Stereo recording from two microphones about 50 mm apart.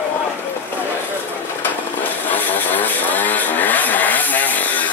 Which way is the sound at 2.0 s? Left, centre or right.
Left.